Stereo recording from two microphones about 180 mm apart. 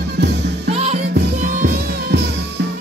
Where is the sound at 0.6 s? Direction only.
35° right (ahead or behind).